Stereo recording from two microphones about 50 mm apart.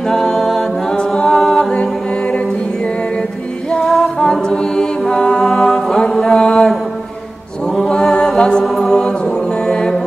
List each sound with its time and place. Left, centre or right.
0.0 s a capella: centre
3.8 s mantra: centre
7.9 s mantra: centre
8.4 s music: centre